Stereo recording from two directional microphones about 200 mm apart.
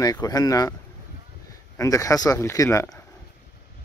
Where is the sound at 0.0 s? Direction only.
20° left (ahead or behind).